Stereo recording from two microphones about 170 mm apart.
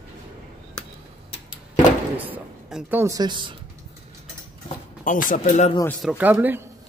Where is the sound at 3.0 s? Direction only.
20° right (ahead or behind).